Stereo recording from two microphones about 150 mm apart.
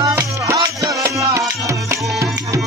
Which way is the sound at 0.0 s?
20° right (ahead or behind).